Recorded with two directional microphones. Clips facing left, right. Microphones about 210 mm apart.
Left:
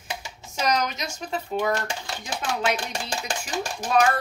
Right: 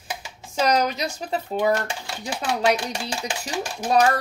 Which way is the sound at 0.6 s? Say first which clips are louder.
Right 4 dB; 35° right (ahead or behind).